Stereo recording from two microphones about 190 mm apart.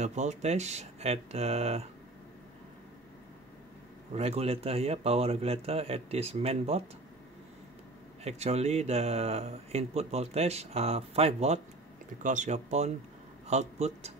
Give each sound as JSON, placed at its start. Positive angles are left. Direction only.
{"t": 0.0, "sound": "speech", "side_deg": -35}
{"t": 4.1, "sound": "speech", "side_deg": -30}
{"t": 8.2, "sound": "speech", "side_deg": -35}